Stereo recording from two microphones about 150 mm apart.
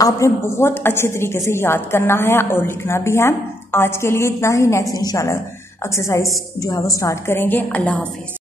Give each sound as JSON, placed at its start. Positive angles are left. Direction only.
{"t": 0.0, "sound": "a woman's voice", "side_deg": 20}